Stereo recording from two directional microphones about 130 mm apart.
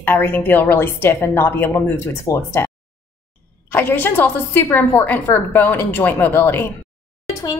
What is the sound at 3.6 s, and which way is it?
A woman's voice, 15° left (ahead or behind).